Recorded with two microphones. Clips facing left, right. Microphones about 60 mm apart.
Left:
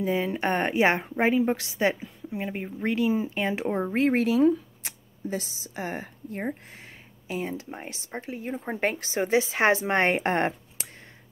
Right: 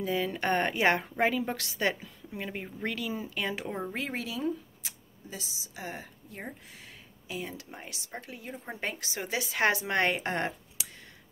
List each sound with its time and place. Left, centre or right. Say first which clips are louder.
0.0 s a woman's voice: left 4 dB; left